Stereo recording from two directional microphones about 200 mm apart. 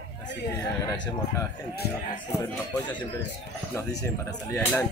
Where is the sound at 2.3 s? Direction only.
10° left (ahead or behind).